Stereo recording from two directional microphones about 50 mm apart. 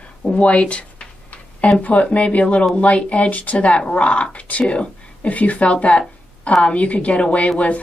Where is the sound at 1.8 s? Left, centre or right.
Left.